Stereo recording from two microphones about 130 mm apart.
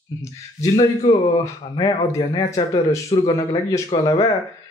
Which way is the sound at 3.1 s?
40° left (ahead or behind).